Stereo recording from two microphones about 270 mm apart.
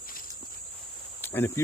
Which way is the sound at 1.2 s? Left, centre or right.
Centre.